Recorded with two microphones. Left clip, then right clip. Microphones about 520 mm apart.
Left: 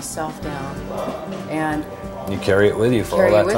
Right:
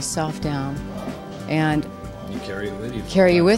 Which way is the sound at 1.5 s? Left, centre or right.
Right.